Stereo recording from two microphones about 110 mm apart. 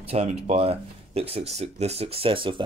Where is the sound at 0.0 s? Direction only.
70° right (ahead or behind).